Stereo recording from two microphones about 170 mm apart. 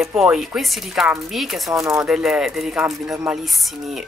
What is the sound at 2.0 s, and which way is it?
Speech, 5° right (ahead or behind).